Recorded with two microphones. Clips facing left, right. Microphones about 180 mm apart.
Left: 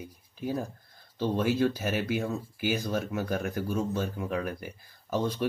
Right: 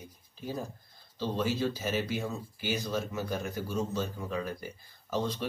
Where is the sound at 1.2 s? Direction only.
55° left (ahead or behind).